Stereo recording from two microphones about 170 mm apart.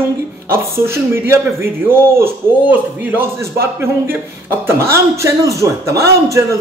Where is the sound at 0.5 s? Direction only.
15° right (ahead or behind).